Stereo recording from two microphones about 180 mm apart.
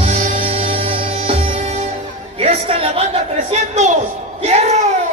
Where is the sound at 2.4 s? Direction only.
35° right (ahead or behind).